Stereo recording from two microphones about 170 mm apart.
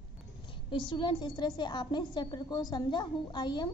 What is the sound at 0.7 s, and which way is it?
A woman's voice, 25° left (ahead or behind).